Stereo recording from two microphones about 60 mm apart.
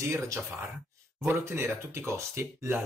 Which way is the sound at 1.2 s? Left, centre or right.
Right.